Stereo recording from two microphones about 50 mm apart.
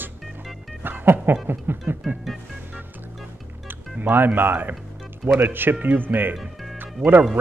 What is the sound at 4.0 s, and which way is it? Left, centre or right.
Speech, right.